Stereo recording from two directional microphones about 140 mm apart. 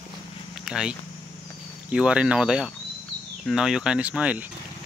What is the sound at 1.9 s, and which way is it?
Speech, 5° right (ahead or behind).